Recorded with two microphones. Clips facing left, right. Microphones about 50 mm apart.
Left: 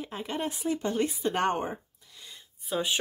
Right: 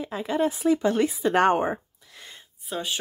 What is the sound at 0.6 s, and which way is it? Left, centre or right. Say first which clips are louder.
Speech: right 5 dB; right.